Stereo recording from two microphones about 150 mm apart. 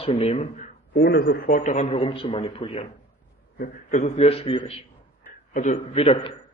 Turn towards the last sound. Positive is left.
turn(degrees=40)  # may be behind; listen again after turning